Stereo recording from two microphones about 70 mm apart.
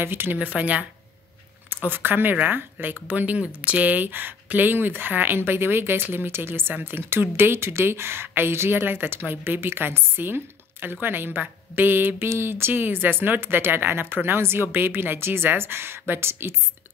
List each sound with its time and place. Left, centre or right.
0.0 s speech: right